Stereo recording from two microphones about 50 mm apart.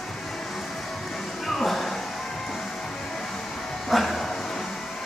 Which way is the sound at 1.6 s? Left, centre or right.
Centre.